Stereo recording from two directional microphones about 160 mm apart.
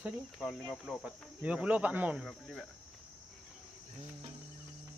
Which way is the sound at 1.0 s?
10° right (ahead or behind).